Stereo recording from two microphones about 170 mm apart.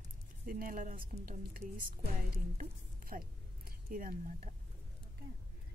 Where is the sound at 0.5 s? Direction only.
55° right (ahead or behind).